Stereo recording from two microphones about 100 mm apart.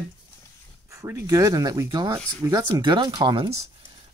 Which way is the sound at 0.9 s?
35° right (ahead or behind).